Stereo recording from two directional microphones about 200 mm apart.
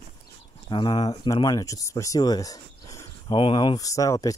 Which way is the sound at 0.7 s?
20° left (ahead or behind).